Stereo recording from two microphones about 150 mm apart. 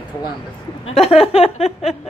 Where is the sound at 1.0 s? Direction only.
40° left (ahead or behind).